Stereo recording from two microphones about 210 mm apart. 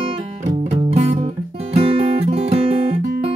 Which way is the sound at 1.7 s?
30° right (ahead or behind).